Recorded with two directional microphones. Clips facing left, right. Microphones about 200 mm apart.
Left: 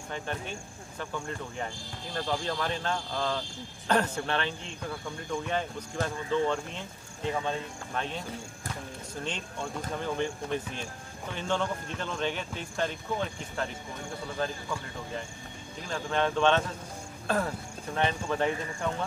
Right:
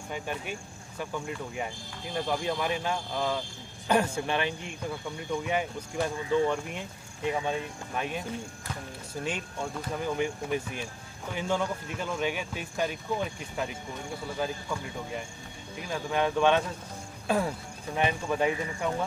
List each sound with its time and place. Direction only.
0.1 s speech: 10° right (ahead or behind)
9.2 s speech: 10° right (ahead or behind)
17.9 s speech: 10° right (ahead or behind)